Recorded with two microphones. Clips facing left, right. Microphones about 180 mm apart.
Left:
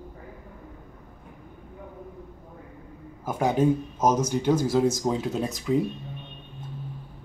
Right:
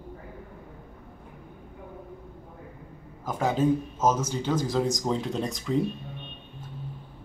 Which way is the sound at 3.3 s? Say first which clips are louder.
Left 2 dB; 10° left (ahead or behind).